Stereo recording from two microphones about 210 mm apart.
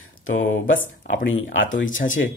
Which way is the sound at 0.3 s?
65° left (ahead or behind).